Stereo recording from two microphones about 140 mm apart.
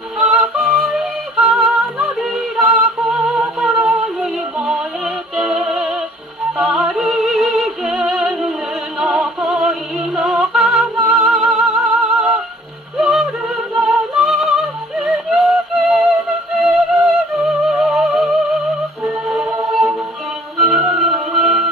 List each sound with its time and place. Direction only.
0.2 s yodeling: 5° right (ahead or behind)
6.6 s music: 5° right (ahead or behind)
19.2 s choir: 5° right (ahead or behind)
19.7 s music: centre (ahead or behind)